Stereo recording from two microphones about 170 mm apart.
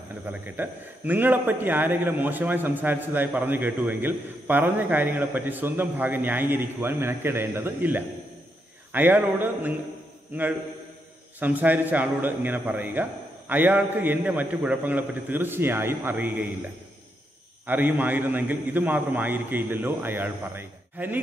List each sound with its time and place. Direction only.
0.3 s a man's voice: 10° right (ahead or behind)
11.3 s a man's voice: 10° right (ahead or behind)
17.6 s a man's voice: 10° right (ahead or behind)